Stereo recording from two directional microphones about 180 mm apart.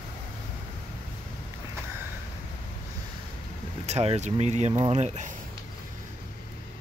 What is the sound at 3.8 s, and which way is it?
Speech, 35° right (ahead or behind).